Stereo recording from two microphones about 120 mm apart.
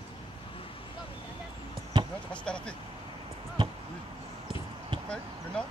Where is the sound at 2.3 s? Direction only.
10° left (ahead or behind).